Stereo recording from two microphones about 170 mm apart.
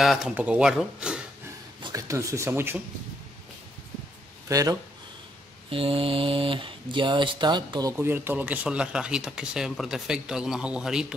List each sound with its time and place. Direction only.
0.0 s speech: centre (ahead or behind)
1.8 s speech: 20° right (ahead or behind)
4.5 s speech: 20° right (ahead or behind)
5.7 s speech: 35° right (ahead or behind)
8.0 s speech: 15° right (ahead or behind)